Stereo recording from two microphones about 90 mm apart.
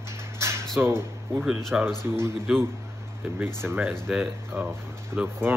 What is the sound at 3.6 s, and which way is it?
Speech, 30° right (ahead or behind).